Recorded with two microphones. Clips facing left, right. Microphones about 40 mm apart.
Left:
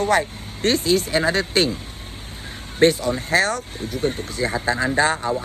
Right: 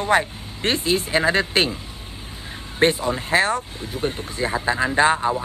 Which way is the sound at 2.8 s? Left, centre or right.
Right.